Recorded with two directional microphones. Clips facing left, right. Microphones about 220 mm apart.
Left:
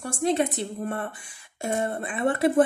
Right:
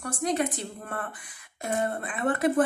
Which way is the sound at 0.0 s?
25° left (ahead or behind).